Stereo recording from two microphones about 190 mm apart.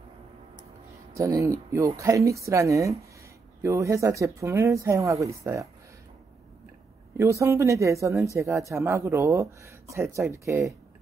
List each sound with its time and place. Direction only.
1.1 s speech: 15° right (ahead or behind)
7.2 s speech: 15° right (ahead or behind)